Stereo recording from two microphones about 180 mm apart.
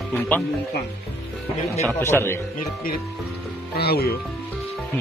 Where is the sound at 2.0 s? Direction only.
15° left (ahead or behind).